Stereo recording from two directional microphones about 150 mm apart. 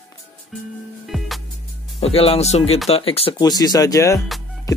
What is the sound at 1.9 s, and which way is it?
Speech, 40° left (ahead or behind).